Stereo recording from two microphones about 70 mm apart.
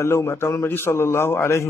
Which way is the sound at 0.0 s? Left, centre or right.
Left.